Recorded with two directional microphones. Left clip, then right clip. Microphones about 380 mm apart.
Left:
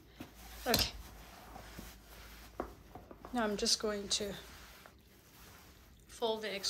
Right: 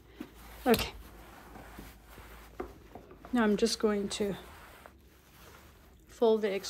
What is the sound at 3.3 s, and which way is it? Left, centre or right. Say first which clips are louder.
A woman's voice: right 5 dB; centre.